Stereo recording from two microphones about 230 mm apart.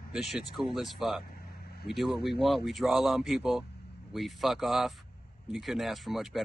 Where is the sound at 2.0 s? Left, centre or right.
Left.